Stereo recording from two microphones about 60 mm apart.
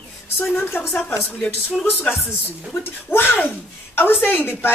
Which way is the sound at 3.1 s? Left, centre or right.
Left.